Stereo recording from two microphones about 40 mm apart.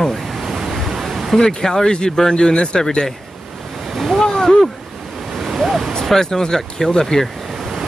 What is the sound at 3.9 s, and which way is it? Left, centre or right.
Waves, centre.